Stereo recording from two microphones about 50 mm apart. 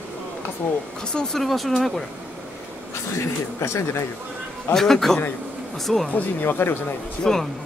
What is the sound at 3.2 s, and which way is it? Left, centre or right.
Speech, left.